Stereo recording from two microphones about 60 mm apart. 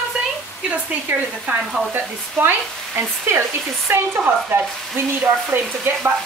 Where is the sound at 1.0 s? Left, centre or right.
Right.